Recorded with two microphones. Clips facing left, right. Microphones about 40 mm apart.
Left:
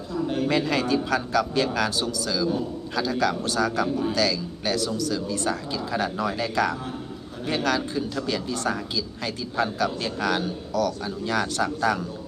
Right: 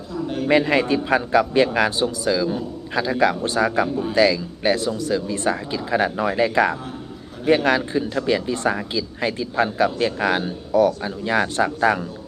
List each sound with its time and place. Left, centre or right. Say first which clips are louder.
0.5 s speech: right 8 dB; right